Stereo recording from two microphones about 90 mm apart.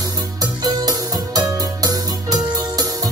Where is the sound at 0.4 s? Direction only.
45° right (ahead or behind).